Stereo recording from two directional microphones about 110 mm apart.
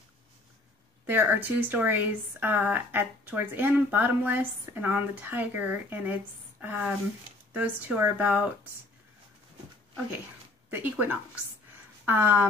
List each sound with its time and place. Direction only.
1.0 s speech: 20° right (ahead or behind)
10.7 s speech: 15° right (ahead or behind)